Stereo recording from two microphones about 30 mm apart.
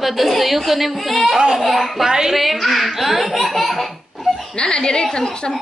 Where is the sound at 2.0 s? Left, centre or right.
Centre.